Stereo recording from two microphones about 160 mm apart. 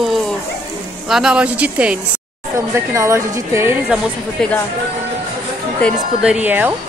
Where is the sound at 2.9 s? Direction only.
20° right (ahead or behind).